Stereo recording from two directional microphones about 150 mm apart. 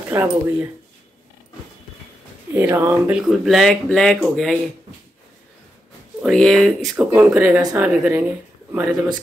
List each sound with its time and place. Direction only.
0.1 s speech: 15° right (ahead or behind)
2.5 s speech: 15° right (ahead or behind); by 4.6 s centre (ahead or behind)
6.2 s speech: 5° left (ahead or behind)
7.0 s speech: 10° right (ahead or behind)